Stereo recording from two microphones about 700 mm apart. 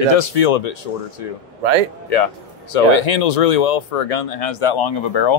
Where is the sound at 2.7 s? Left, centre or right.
Left.